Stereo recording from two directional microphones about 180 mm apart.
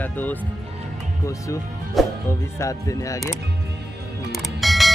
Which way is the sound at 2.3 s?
15° left (ahead or behind).